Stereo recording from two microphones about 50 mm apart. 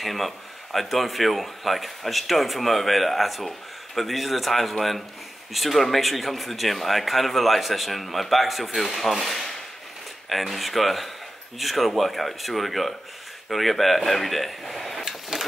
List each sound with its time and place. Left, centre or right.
0.0 s speech: centre
15.0 s vehicle: centre